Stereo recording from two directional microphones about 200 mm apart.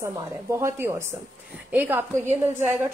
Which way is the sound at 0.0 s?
15° right (ahead or behind).